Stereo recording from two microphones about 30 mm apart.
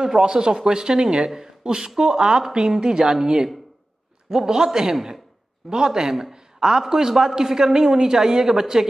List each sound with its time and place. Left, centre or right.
0.0 s speech: right
4.3 s speech: right
6.3 s a sound: right
6.9 s speech: centre